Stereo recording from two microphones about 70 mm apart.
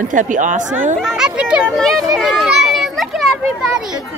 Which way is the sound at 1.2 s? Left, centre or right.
Centre.